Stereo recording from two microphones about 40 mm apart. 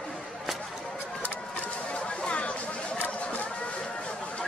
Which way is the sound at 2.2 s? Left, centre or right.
Left.